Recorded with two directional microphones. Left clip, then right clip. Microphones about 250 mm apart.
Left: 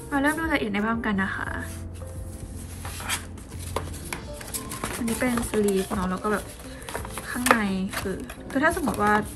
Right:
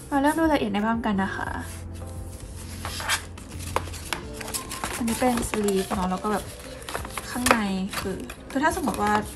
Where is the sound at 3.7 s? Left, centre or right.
Centre.